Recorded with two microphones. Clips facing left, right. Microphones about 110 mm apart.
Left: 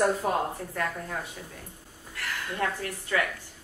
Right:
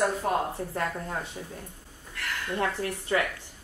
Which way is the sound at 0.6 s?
25° right (ahead or behind).